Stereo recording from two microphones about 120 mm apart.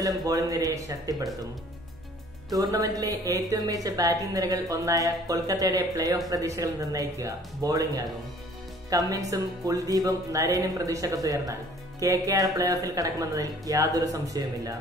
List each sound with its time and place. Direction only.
0.0 s speech: 30° right (ahead or behind)
2.5 s speech: 30° right (ahead or behind)